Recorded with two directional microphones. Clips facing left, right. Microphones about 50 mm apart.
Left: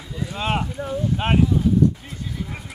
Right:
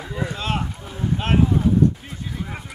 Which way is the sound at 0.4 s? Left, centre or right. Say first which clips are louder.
Left 4 dB; left.